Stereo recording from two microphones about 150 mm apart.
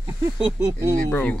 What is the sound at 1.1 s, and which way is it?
Speech, 10° left (ahead or behind).